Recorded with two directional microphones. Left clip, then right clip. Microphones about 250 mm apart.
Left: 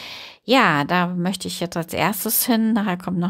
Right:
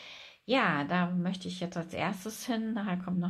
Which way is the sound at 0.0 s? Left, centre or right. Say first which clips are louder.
Left 13 dB; left.